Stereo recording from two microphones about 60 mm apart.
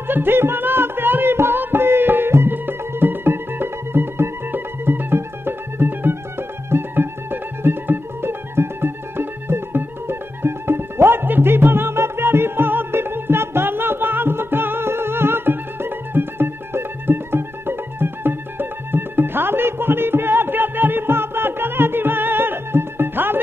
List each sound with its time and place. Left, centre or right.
0.1 s music: right